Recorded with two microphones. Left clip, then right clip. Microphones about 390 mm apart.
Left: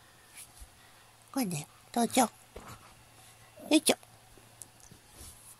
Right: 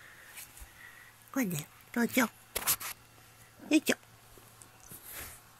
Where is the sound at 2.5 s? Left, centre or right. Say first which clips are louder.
Right 13 dB; right.